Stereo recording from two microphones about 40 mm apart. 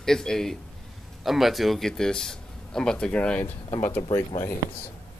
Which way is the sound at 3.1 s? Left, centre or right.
Left.